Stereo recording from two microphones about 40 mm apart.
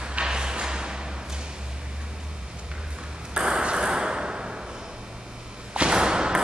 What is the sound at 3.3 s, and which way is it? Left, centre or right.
Ping, centre.